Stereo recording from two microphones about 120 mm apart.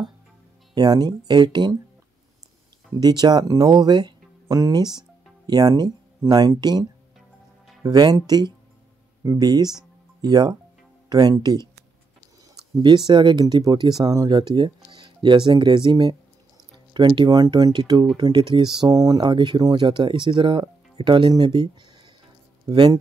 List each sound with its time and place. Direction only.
0.7 s speech: 35° right (ahead or behind)
2.9 s speech: 35° right (ahead or behind)
12.7 s speech: 35° right (ahead or behind)